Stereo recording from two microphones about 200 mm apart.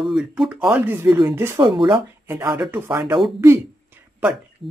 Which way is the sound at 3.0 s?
20° right (ahead or behind).